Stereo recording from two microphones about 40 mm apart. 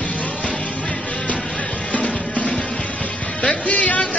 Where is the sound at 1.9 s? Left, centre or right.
Left.